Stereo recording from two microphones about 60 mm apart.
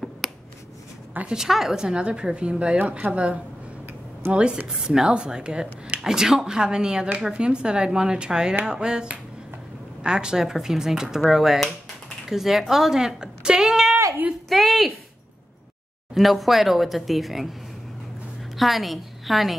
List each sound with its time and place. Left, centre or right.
1.3 s a woman's voice: centre
14.5 s a sound: centre
16.2 s a woman's voice: centre